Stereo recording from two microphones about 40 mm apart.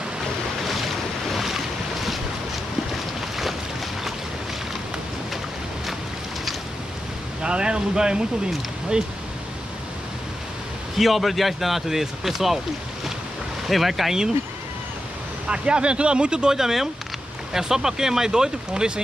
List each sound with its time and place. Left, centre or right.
0.7 s boat: centre
3.2 s boat: centre
7.4 s speech: right
11.0 s speech: centre
13.7 s speech: centre
15.4 s speech: right